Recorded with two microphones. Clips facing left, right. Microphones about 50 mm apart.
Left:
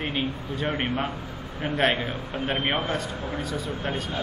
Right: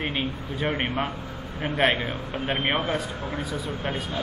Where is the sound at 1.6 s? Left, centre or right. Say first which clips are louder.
Right 1 dB; centre.